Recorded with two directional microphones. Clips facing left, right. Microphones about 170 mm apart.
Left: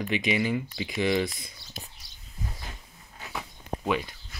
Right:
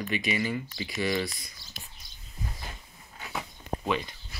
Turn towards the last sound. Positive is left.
turn(degrees=10)  # may be behind; listen again after turning